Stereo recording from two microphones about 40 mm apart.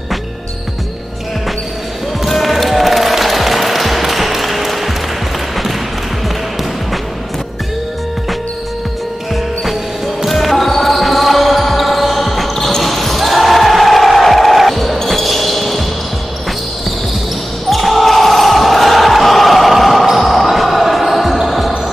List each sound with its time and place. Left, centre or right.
2.2 s music: centre
10.2 s basketball bounce: centre
17.6 s basketball bounce: centre